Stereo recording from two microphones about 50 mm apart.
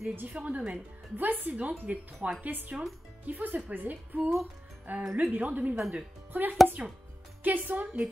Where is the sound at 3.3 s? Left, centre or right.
Right.